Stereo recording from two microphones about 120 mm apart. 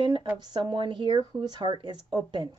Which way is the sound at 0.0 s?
40° right (ahead or behind).